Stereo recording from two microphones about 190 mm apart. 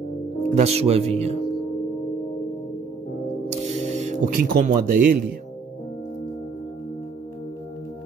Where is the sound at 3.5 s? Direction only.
35° right (ahead or behind).